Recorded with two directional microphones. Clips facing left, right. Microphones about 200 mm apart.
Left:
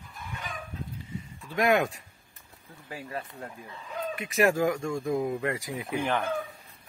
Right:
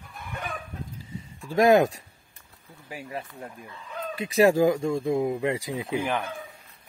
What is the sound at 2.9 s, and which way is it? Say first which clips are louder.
Speech: right 1 dB; 15° right (ahead or behind).